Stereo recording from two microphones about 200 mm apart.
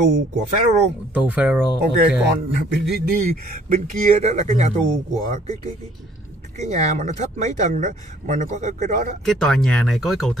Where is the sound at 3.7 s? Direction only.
40° right (ahead or behind).